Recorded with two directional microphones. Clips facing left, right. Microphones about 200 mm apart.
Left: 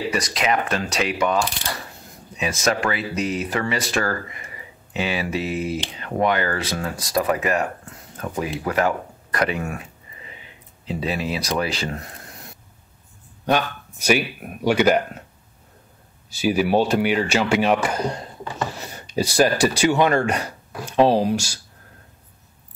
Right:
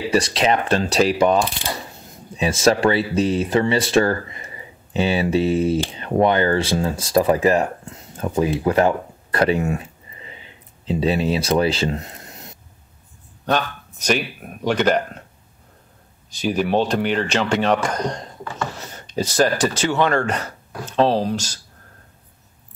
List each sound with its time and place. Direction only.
0.1 s speech: 30° right (ahead or behind)
1.4 s mechanisms: 20° right (ahead or behind)
2.3 s speech: 30° right (ahead or behind)
13.5 s speech: 10° left (ahead or behind)
16.3 s speech: 5° left (ahead or behind)